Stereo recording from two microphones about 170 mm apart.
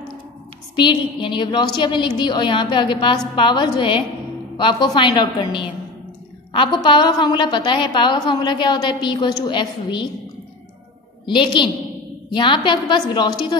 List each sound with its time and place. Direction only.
0.7 s a woman's voice: 30° left (ahead or behind)
11.2 s a woman's voice: 25° left (ahead or behind)